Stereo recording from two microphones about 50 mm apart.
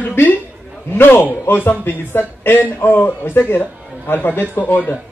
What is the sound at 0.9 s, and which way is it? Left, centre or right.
A man's voice, left.